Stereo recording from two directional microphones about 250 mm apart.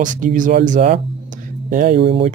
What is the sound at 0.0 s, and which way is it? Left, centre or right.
Speech, right.